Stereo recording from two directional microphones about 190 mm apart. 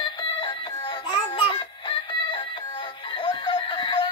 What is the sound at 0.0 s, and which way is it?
Music, 25° left (ahead or behind).